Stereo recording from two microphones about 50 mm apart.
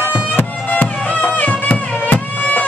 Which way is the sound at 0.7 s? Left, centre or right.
Left.